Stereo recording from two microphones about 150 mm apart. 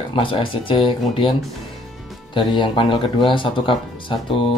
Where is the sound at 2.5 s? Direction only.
35° left (ahead or behind).